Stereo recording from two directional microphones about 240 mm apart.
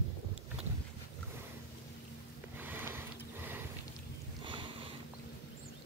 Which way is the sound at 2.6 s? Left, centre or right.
Centre.